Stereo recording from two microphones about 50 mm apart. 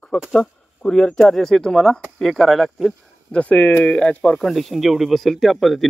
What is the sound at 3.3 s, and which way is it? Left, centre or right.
Speech, left.